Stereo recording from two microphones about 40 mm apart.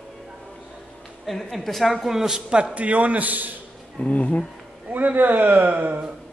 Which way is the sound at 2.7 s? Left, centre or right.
Right.